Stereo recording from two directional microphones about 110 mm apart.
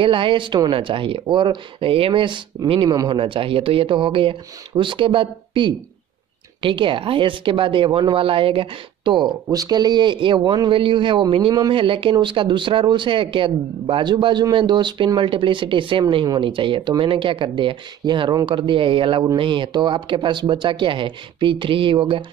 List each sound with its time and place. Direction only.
0.0 s speech: 50° right (ahead or behind)
3.2 s speech: 55° right (ahead or behind)
9.5 s speech: 35° right (ahead or behind)